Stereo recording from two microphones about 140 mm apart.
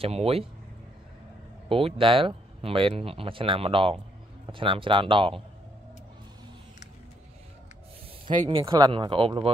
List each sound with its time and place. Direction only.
0.0 s speech: 45° right (ahead or behind)
1.7 s speech: 40° right (ahead or behind)
8.3 s speech: 35° right (ahead or behind)